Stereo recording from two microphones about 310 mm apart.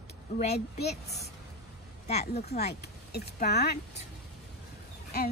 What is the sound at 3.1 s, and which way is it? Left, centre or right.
Speech, left.